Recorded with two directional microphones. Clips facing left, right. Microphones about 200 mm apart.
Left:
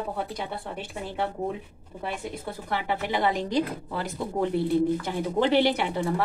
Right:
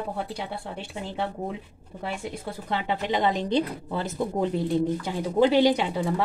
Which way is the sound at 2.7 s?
20° right (ahead or behind).